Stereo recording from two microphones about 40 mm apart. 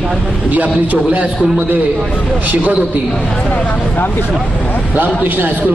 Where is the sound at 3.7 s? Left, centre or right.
Left.